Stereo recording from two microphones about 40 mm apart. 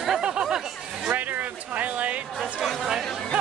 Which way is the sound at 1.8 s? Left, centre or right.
Right.